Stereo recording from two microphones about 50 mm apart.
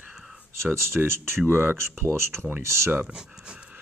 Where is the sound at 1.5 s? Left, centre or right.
Right.